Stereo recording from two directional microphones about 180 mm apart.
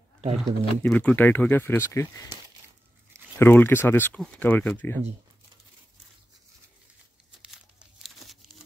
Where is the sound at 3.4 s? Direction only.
10° left (ahead or behind).